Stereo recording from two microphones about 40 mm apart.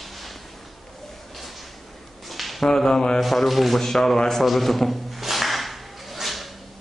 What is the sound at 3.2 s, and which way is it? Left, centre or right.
Speech, centre.